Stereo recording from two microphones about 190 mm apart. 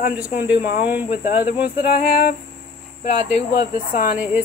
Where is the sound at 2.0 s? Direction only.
50° left (ahead or behind).